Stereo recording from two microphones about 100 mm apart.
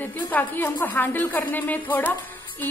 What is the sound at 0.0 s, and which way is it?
A woman's voice, 20° left (ahead or behind).